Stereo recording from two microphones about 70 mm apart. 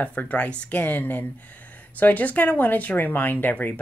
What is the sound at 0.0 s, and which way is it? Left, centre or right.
Speech, left.